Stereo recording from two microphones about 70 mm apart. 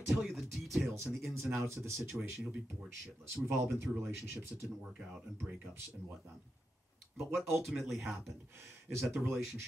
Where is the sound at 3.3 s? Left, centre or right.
Right.